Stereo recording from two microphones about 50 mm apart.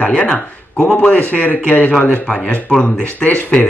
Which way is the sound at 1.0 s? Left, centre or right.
Left.